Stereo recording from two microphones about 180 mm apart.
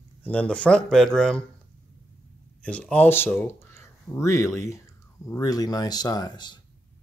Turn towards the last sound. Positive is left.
turn(degrees=25)  # may be behind; listen again after turning